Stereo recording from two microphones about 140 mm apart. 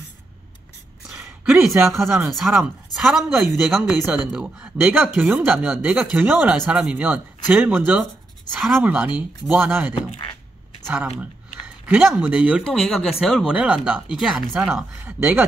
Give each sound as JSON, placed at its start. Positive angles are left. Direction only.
{"t": 1.1, "sound": "speech", "side_deg": -5}
{"t": 3.3, "sound": "speech", "side_deg": -15}
{"t": 4.3, "sound": "speech", "side_deg": -5}
{"t": 8.5, "sound": "speech", "side_deg": 0}
{"t": 8.8, "sound": "speech", "side_deg": -10}